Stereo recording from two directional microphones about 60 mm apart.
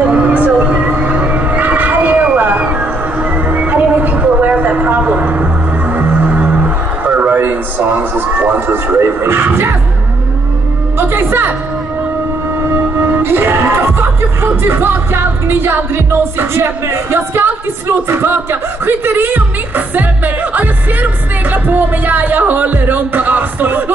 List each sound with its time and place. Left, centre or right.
0.0 s a sound: right
0.7 s music: right
11.0 s music: right
12.7 s music: right
15.4 s speech: right